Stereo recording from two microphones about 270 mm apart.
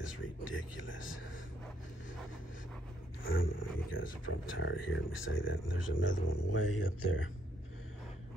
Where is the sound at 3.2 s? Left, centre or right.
Left.